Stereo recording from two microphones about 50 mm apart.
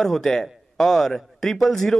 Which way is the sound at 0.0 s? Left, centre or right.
Centre.